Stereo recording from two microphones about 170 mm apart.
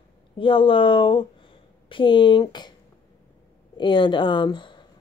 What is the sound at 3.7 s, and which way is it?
Speech, 25° left (ahead or behind).